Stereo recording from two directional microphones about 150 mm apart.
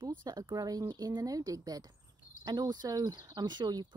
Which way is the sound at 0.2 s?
25° right (ahead or behind).